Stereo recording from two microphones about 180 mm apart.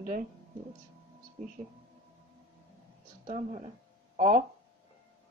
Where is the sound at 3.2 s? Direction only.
40° right (ahead or behind).